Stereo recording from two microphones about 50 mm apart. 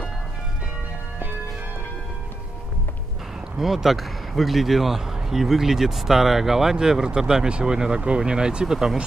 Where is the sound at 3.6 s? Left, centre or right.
Centre.